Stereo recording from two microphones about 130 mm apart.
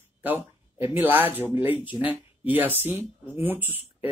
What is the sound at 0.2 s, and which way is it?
Speech, 15° right (ahead or behind).